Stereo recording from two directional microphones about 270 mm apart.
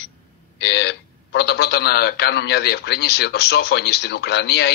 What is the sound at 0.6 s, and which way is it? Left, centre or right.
A man's voice, left.